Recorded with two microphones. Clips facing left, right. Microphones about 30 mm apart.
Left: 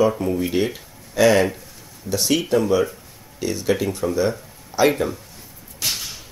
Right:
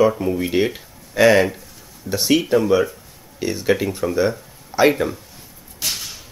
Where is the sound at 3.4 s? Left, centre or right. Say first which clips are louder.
Right 2 dB; centre.